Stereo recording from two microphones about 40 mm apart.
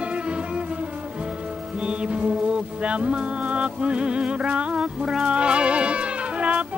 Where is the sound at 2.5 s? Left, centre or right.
Right.